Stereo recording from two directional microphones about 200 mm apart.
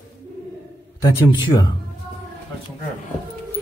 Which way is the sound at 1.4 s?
20° left (ahead or behind).